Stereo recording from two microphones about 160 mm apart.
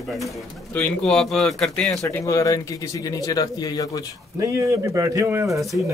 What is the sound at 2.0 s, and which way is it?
Speech, 20° left (ahead or behind).